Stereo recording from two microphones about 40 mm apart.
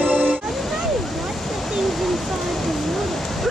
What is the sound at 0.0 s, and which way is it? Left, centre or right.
Music, right.